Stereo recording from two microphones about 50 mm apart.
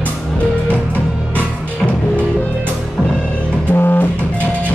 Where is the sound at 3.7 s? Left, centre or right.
Left.